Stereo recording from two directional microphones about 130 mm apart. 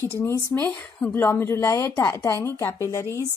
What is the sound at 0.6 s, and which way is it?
A woman's voice, 15° left (ahead or behind).